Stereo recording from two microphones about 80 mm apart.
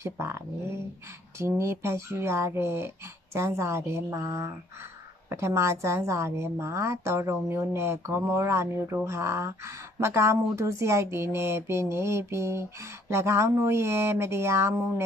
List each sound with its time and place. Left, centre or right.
0.0 s a woman's voice: right